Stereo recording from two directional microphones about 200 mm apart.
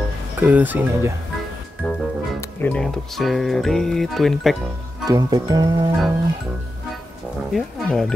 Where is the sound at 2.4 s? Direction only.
10° left (ahead or behind).